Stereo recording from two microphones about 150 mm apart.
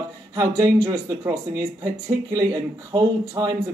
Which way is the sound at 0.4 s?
25° right (ahead or behind).